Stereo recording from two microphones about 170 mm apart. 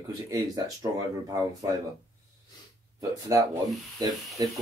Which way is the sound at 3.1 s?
20° right (ahead or behind).